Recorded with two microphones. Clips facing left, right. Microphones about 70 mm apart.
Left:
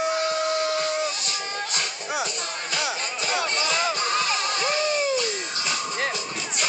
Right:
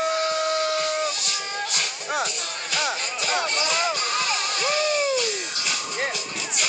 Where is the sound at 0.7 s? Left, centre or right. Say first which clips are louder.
Right 1 dB; left.